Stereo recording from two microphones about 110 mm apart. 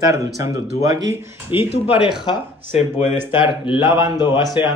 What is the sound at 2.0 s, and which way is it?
Speech, 5° right (ahead or behind).